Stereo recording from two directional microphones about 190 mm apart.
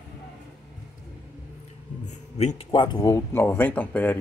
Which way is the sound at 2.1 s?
35° left (ahead or behind).